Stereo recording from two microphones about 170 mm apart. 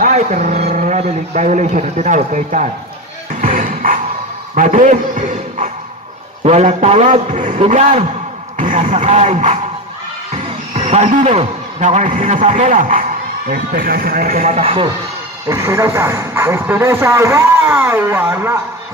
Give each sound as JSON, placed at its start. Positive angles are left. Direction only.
{"t": 0.0, "sound": "speech", "side_deg": -45}
{"t": 3.4, "sound": "music", "side_deg": -50}
{"t": 4.6, "sound": "a man's voice", "side_deg": -45}
{"t": 13.5, "sound": "speech", "side_deg": -60}
{"t": 14.5, "sound": "a man's voice", "side_deg": -35}
{"t": 15.4, "sound": "speech", "side_deg": -15}